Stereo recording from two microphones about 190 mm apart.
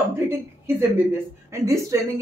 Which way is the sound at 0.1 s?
15° right (ahead or behind).